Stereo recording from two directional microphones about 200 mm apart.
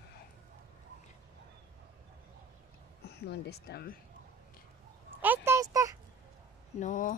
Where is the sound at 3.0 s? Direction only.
55° left (ahead or behind).